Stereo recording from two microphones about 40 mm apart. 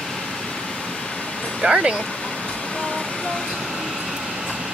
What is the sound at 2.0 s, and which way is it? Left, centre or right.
Vehicle, left.